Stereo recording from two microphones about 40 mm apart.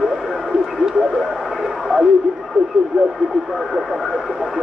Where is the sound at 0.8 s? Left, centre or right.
Right.